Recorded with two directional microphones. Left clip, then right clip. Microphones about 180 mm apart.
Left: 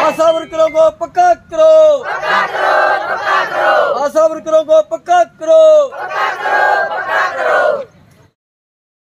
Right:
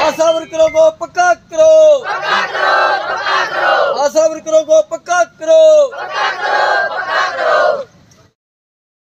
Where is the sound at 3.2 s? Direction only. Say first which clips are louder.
Left 1 dB; centre (ahead or behind).